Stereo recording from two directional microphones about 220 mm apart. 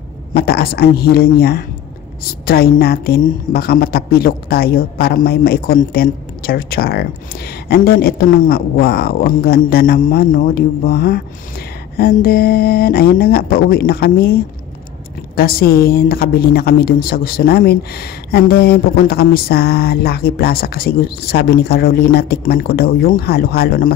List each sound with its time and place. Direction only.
0.3 s a woman's voice: 45° left (ahead or behind)